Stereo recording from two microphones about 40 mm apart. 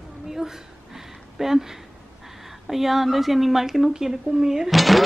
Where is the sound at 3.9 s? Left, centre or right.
Centre.